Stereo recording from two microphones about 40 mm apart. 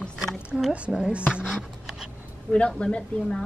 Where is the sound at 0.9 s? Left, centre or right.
Right.